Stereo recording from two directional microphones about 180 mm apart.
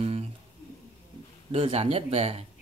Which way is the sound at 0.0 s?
35° right (ahead or behind).